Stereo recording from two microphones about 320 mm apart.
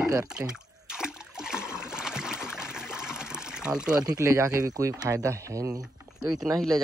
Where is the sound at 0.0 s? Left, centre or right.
Centre.